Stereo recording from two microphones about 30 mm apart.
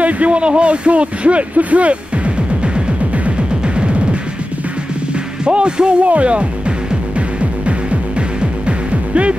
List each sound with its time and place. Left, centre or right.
0.0 s a sound: right
0.4 s speech: right
3.3 s music: right
5.4 s music: right
6.0 s speech: right
7.2 s music: right